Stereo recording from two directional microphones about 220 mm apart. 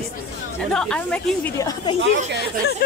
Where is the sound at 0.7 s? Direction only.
5° left (ahead or behind).